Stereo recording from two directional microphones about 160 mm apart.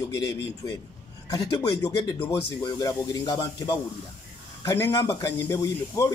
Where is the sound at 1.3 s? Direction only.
25° left (ahead or behind).